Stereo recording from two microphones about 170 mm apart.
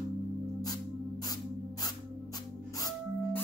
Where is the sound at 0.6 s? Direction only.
20° left (ahead or behind).